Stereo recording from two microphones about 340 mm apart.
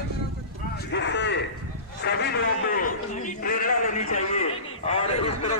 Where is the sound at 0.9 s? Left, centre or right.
Left.